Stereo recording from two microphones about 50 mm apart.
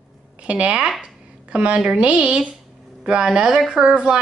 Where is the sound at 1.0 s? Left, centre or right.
Right.